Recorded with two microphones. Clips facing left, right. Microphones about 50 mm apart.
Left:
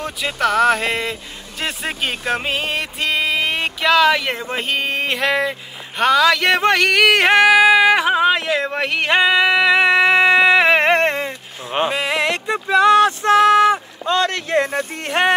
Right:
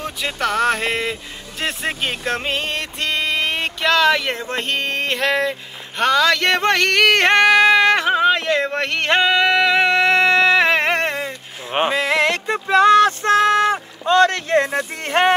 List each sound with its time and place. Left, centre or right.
0.0 s speech: centre; by 11.3 s left
11.9 s a sound: right
14.1 s speech: right